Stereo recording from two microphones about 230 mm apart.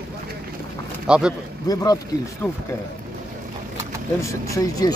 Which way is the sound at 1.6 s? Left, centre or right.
Centre.